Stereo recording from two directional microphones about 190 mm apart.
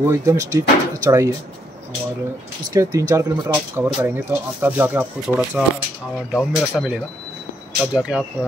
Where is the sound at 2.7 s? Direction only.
15° right (ahead or behind).